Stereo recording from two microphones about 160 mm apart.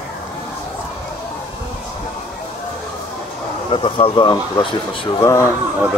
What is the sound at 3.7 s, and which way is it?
Speech, 35° left (ahead or behind).